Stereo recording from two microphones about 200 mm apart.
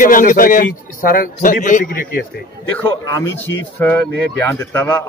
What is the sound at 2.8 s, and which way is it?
Speech, 15° left (ahead or behind).